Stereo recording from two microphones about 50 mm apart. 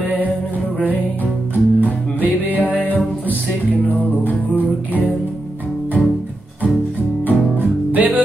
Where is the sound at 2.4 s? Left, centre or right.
Left.